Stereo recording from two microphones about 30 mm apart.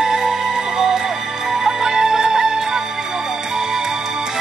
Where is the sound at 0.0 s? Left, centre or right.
Right.